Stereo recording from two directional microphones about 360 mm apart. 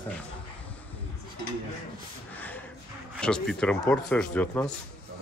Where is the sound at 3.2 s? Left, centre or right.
Centre.